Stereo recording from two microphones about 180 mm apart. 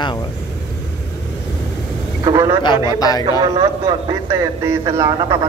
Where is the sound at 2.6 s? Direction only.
25° left (ahead or behind).